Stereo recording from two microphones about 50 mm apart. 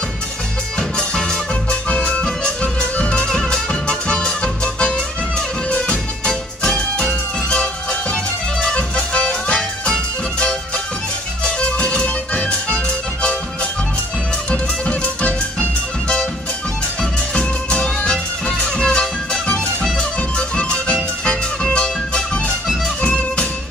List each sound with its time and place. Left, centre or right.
0.7 s music: centre
1.9 s music: left
3.3 s music: centre
11.4 s music: left
14.5 s music: left
17.3 s music: centre